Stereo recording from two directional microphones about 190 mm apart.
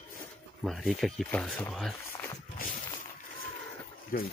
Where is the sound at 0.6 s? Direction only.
Centre (ahead or behind).